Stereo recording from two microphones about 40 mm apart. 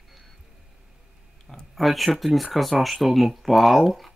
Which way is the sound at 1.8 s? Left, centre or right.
Centre.